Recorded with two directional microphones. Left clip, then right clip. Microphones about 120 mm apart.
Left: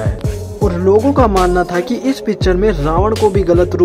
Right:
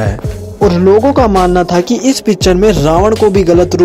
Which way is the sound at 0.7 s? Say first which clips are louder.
Right 3 dB; 25° right (ahead or behind).